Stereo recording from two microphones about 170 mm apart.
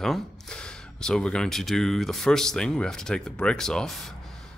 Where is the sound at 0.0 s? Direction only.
5° left (ahead or behind).